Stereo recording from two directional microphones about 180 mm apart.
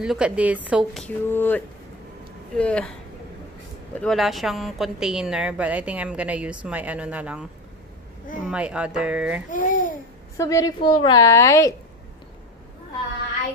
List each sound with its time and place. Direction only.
0.0 s a woman's voice: 5° right (ahead or behind)
1.0 s speech: 10° left (ahead or behind)
4.0 s a woman's voice: centre (ahead or behind)
9.5 s speech: 45° left (ahead or behind)
10.3 s a woman's voice: 20° left (ahead or behind)